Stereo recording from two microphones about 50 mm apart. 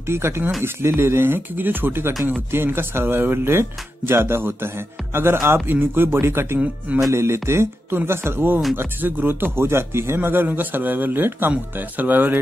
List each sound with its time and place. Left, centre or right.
0.0 s speech: right